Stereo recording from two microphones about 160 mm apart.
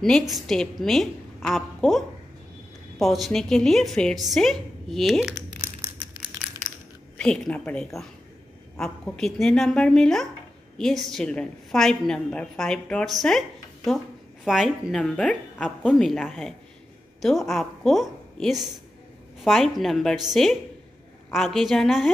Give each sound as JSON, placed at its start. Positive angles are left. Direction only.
{"t": 0.0, "sound": "a woman's voice", "side_deg": 0}
{"t": 5.8, "sound": "crushing", "side_deg": -15}
{"t": 7.2, "sound": "a woman's voice", "side_deg": 5}
{"t": 14.4, "sound": "a woman's voice", "side_deg": 0}